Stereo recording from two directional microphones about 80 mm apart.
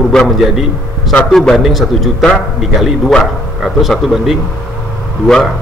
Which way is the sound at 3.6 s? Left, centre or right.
Centre.